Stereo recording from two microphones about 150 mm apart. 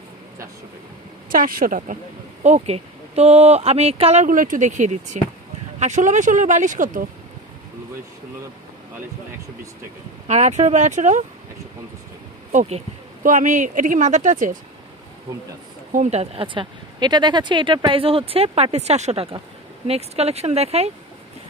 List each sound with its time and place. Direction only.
1.3 s a woman's voice: 65° right (ahead or behind)
2.4 s speech: 45° right (ahead or behind); by 7.1 s 60° right (ahead or behind)
10.2 s speech: 50° right (ahead or behind)
12.5 s speech: 45° right (ahead or behind)
13.2 s speech: 60° right (ahead or behind)
15.9 s speech: 50° right (ahead or behind)